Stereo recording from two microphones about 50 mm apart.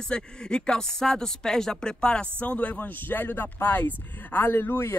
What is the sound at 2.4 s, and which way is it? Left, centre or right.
Speech, left.